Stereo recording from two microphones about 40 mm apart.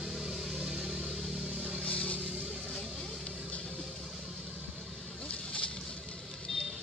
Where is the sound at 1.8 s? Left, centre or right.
Left.